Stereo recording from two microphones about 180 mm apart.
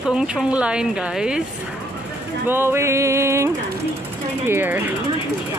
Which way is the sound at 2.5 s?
15° right (ahead or behind).